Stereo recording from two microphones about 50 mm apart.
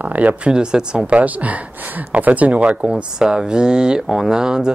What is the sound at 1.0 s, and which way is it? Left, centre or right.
Speech, right.